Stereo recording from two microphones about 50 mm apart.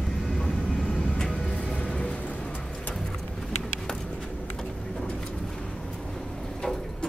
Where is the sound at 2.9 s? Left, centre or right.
Centre.